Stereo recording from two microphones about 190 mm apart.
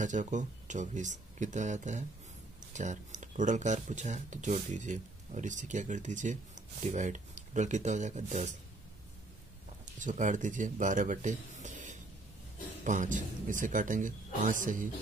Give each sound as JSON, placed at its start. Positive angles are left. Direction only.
{"t": 0.0, "sound": "speech", "side_deg": -40}
{"t": 9.9, "sound": "speech", "side_deg": -40}